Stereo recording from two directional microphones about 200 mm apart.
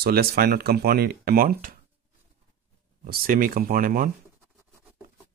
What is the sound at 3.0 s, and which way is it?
Speech, 45° right (ahead or behind).